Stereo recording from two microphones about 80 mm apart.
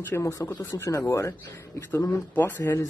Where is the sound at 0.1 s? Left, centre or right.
Left.